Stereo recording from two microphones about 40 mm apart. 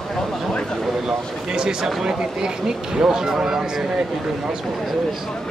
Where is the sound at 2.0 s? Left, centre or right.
Centre.